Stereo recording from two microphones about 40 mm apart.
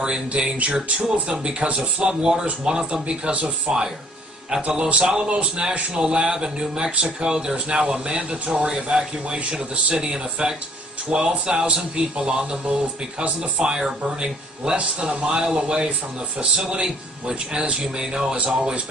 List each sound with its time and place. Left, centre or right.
0.3 s speech: right